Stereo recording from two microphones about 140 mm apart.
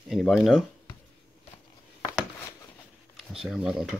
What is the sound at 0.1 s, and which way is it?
Speech, centre (ahead or behind).